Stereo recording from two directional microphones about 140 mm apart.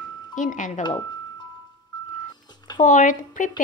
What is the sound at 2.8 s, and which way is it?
Speech, 65° left (ahead or behind).